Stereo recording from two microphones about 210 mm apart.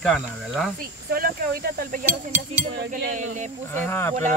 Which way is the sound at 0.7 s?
45° right (ahead or behind).